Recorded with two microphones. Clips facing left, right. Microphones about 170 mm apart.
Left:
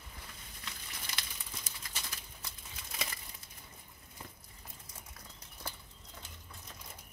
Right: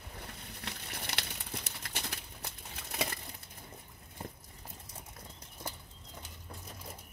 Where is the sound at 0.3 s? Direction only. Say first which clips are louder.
Right 5 dB; 60° right (ahead or behind).